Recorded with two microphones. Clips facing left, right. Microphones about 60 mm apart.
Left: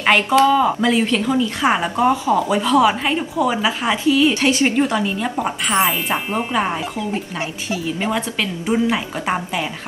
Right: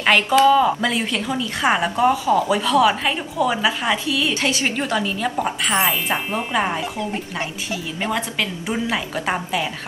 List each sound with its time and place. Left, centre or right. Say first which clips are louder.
0.0 s a woman's voice: left 1 dB; centre
4.1 s speech: left 6 dB; left
4.7 s a woman's voice: left 4 dB; centre
7.3 s a woman's voice: left 2 dB; centre